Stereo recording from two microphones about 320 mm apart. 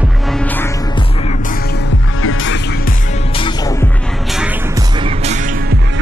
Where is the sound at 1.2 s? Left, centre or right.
Left.